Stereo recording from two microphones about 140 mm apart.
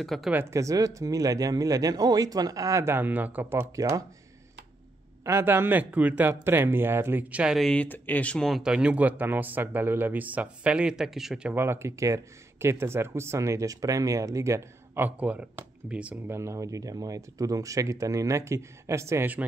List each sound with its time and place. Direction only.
0.0 s speech: centre (ahead or behind)
0.3 s speech: 15° right (ahead or behind)
5.2 s speech: 20° right (ahead or behind)
16.3 s speech: 20° right (ahead or behind)